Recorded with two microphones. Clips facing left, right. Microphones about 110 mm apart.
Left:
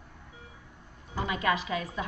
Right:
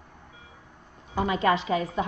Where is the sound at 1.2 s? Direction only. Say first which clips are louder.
Right 5 dB; 30° right (ahead or behind).